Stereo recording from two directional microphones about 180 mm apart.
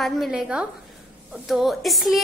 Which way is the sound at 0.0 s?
Centre (ahead or behind).